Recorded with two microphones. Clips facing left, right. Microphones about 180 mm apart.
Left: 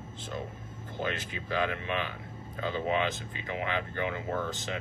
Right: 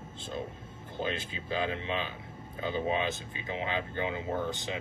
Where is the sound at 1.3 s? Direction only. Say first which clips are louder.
Left 1 dB; 20° right (ahead or behind).